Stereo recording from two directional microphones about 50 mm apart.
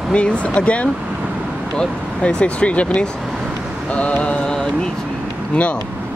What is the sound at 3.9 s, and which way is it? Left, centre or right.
Mantra, left.